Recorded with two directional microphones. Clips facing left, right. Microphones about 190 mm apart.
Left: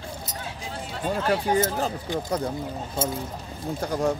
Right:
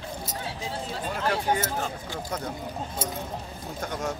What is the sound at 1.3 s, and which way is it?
Speech, 35° left (ahead or behind).